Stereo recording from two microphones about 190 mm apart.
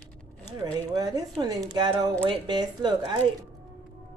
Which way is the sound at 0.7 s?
20° right (ahead or behind).